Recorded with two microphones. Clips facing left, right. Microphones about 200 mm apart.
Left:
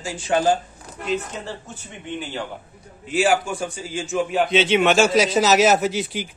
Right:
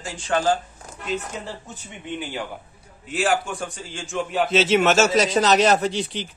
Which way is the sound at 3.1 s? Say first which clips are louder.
Left 3 dB; centre (ahead or behind).